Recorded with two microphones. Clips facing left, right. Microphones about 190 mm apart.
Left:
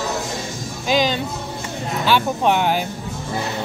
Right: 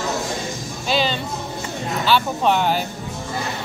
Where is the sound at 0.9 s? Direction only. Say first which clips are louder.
Left 3 dB; 10° left (ahead or behind).